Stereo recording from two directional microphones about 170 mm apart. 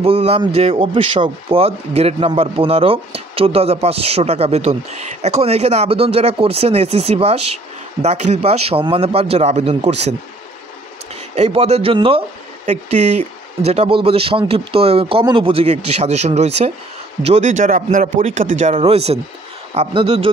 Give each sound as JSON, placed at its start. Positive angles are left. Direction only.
{"t": 0.0, "sound": "speech", "side_deg": -35}
{"t": 11.3, "sound": "a man's voice", "side_deg": -40}